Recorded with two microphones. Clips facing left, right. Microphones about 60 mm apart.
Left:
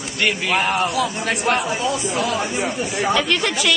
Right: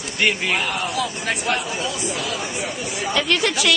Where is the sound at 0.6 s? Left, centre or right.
Left.